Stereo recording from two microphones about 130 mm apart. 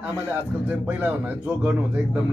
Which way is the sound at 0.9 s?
15° right (ahead or behind).